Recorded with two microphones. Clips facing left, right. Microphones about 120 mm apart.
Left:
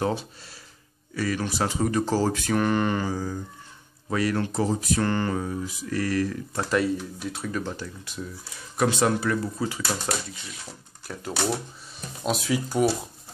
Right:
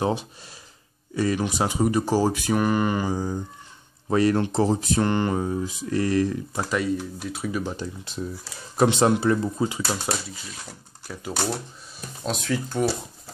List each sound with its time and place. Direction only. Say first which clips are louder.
0.0 s speech: right 2 dB; 15° right (ahead or behind)
6.5 s speech: left 1 dB; 5° right (ahead or behind); by 9.8 s 20° right (ahead or behind)
11.1 s speech: left 1 dB; centre (ahead or behind)